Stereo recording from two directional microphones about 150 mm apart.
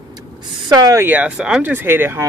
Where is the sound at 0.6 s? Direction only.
25° right (ahead or behind).